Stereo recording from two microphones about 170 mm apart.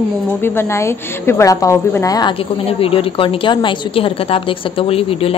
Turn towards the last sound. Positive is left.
turn(degrees=35)  # may be behind; listen again after turning